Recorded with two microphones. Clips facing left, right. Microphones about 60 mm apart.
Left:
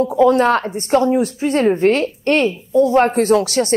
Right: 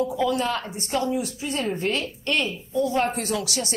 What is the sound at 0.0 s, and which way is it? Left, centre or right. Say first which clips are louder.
A woman's voice: left 11 dB; left.